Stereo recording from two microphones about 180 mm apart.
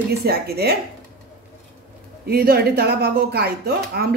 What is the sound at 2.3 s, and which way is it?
Speech, 60° right (ahead or behind).